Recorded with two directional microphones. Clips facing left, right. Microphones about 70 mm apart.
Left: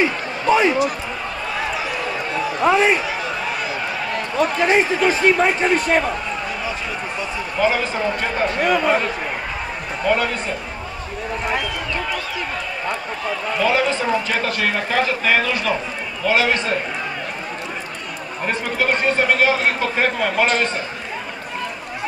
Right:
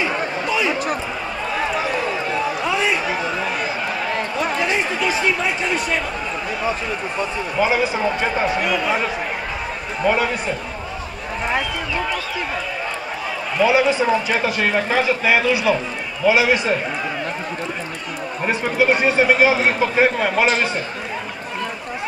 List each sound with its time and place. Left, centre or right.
2.6 s a sound: left
4.6 s a sound: left
5.2 s speech: left
7.5 s a man's voice: centre
8.6 s speech: left
10.0 s a man's voice: centre
13.6 s a man's voice: centre
18.4 s a man's voice: centre